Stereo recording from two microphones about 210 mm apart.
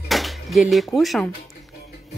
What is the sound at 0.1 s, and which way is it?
Speech, centre (ahead or behind).